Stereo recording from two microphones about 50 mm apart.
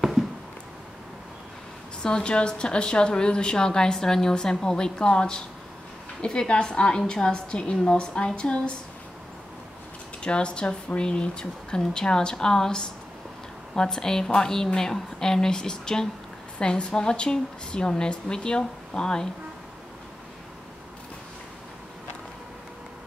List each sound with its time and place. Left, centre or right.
2.0 s a woman's voice: centre
10.2 s a woman's voice: centre